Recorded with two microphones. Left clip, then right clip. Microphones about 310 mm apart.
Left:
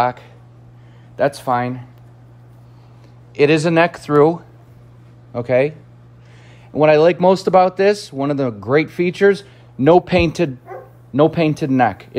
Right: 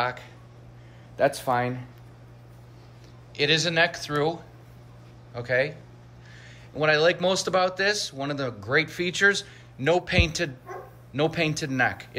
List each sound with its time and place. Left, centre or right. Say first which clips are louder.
0.0 s speech: left 10 dB; centre
3.3 s speech: left 9 dB; centre
6.8 s speech: left 10 dB; centre